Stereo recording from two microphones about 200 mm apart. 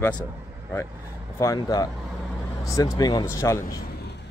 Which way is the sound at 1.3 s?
15° left (ahead or behind).